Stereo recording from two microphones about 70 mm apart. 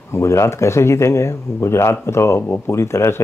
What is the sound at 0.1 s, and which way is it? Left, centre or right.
Speech, left.